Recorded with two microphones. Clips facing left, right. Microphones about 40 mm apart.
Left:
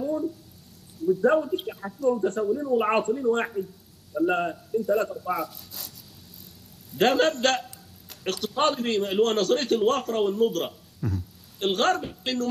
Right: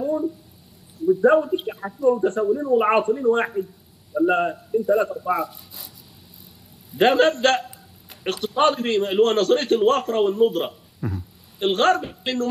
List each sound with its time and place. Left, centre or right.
0.0 s a sound: centre
1.0 s a man's voice: centre
6.9 s a man's voice: centre